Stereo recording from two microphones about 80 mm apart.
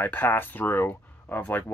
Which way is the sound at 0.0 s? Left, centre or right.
Left.